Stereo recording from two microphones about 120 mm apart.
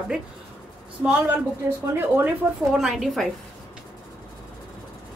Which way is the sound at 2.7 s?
Centre (ahead or behind).